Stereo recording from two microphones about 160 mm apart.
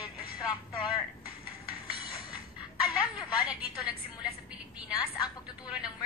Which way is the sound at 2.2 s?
30° left (ahead or behind).